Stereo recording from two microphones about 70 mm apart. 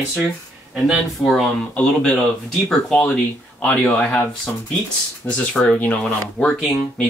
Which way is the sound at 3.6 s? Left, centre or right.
Centre.